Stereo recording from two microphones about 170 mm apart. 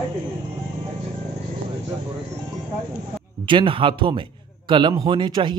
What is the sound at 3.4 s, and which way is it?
Speech, 30° right (ahead or behind).